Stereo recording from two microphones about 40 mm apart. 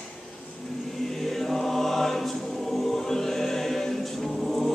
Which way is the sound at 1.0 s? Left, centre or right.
Centre.